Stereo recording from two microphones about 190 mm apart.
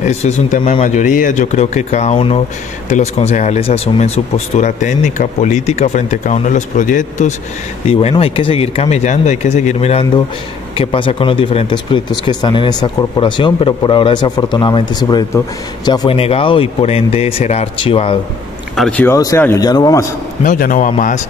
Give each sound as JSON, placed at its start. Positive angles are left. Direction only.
{"t": 0.0, "sound": "speech", "side_deg": 35}
{"t": 7.9, "sound": "speech", "side_deg": 30}
{"t": 18.8, "sound": "speech", "side_deg": 5}
{"t": 20.4, "sound": "a man's voice", "side_deg": 45}